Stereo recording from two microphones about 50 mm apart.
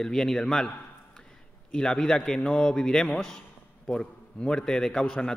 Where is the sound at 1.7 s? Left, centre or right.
Centre.